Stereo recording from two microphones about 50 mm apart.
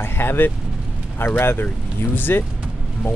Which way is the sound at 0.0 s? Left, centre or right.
Left.